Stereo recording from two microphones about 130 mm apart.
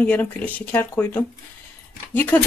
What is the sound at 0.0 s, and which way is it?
Speech, 10° left (ahead or behind).